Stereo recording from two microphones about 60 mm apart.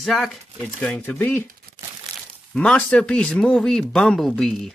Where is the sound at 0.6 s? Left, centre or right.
Centre.